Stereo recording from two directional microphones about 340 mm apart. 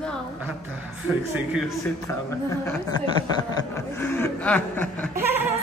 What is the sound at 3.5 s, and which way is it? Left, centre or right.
Snicker, centre.